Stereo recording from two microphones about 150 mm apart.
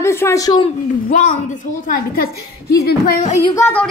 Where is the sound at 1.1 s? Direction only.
60° left (ahead or behind).